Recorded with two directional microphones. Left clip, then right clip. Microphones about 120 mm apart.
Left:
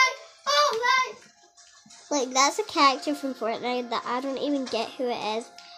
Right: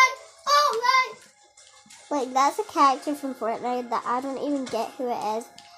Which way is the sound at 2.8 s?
10° right (ahead or behind).